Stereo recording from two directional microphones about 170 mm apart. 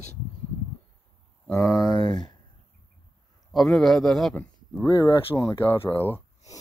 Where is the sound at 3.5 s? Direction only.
Centre (ahead or behind).